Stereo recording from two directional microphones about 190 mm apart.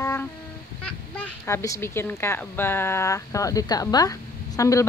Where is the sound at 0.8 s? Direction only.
5° left (ahead or behind).